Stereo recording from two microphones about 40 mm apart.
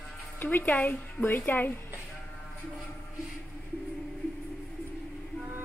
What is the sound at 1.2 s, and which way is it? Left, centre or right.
Speech, left.